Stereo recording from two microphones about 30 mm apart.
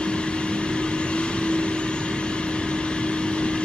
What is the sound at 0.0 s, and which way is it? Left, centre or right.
Vehicle, left.